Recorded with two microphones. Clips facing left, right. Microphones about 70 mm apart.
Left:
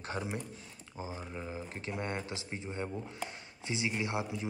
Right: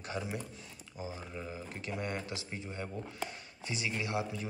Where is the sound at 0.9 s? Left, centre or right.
Left.